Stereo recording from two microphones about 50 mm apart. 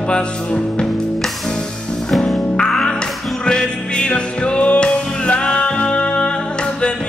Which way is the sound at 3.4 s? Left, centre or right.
Centre.